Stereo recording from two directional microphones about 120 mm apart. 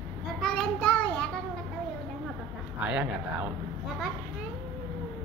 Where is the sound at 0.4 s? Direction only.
5° left (ahead or behind).